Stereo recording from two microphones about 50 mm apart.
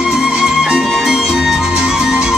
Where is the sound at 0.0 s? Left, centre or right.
Centre.